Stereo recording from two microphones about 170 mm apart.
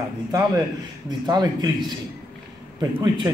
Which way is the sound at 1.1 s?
25° right (ahead or behind).